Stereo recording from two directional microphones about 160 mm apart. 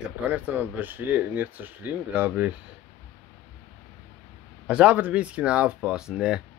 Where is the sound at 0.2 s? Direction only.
10° right (ahead or behind).